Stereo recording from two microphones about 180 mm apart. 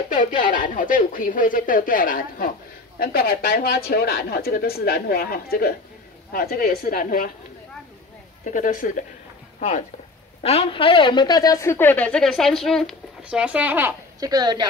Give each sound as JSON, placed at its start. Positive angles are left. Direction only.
{"t": 0.1, "sound": "speech", "side_deg": 45}
{"t": 8.5, "sound": "a woman's voice", "side_deg": 45}